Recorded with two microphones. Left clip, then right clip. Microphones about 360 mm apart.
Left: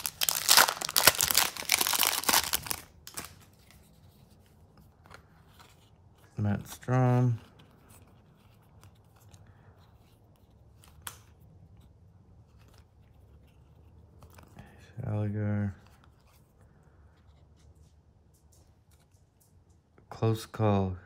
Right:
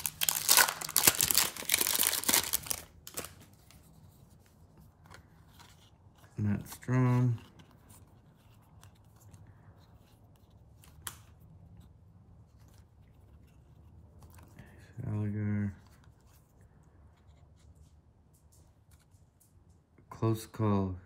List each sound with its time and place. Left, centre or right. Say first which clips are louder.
0.0 s crumpling: left 3 dB; centre
5.0 s scissors: left 3 dB; centre
6.9 s speech: left 4 dB; centre
15.0 s a sound: left 4 dB; left
20.2 s speech: left 3 dB; centre